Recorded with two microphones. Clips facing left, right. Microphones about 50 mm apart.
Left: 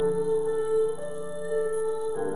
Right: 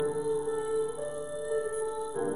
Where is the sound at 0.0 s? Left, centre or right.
Centre.